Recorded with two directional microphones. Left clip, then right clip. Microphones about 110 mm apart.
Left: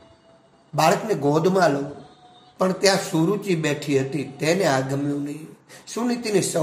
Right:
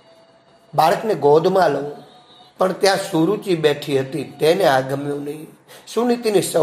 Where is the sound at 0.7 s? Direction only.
10° right (ahead or behind).